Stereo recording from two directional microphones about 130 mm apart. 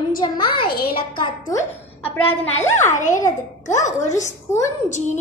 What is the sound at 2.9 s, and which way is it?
A woman's voice, 75° left (ahead or behind).